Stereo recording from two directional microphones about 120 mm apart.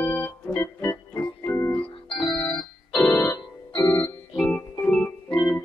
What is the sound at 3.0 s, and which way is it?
Organ, 20° left (ahead or behind).